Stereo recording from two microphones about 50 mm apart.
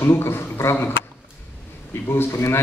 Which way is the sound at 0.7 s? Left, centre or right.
Left.